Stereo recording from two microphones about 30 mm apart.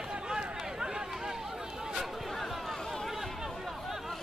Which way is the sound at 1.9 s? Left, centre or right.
Centre.